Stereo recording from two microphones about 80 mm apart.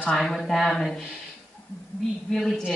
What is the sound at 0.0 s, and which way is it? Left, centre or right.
Speech, centre.